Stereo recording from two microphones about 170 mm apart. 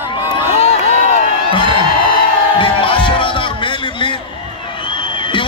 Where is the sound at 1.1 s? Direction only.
35° left (ahead or behind).